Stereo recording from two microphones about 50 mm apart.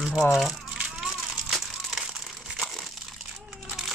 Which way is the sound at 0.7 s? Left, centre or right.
Right.